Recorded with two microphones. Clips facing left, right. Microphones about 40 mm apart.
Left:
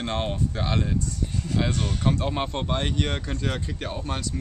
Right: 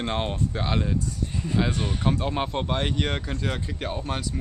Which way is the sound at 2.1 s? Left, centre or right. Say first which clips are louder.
Even; centre.